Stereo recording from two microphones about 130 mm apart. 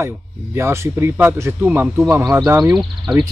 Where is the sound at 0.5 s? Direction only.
20° right (ahead or behind).